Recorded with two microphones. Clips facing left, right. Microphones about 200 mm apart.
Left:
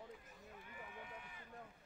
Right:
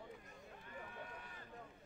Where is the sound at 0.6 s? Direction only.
10° left (ahead or behind).